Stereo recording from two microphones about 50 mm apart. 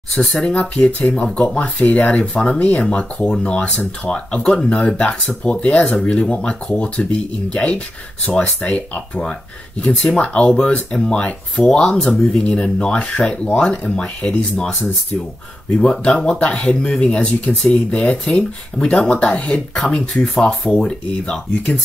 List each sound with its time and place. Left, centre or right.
0.3 s speech: left
5.9 s speech: centre
15.8 s speech: centre